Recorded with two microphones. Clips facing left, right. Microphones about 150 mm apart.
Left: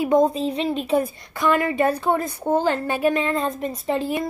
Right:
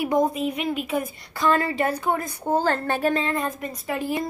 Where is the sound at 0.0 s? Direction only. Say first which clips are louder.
Left 4 dB; 25° left (ahead or behind).